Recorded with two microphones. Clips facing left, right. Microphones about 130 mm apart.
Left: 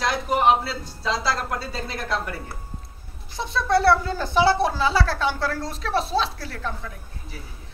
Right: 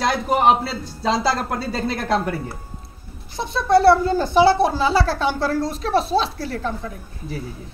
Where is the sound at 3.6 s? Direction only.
25° right (ahead or behind).